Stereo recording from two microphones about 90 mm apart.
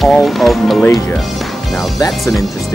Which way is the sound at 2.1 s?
Centre (ahead or behind).